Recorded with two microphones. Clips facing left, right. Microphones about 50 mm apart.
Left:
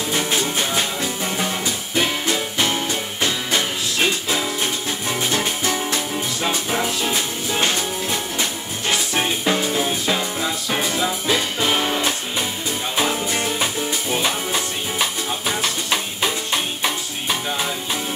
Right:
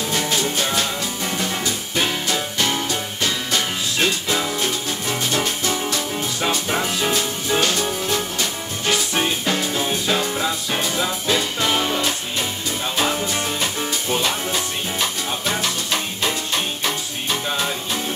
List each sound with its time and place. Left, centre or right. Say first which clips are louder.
0.1 s music: left 1 dB; centre
5.4 s music: even; left
7.6 s music: right 1 dB; left
11.2 s music: even; centre
14.2 s music: even; centre
16.8 s music: left 1 dB; centre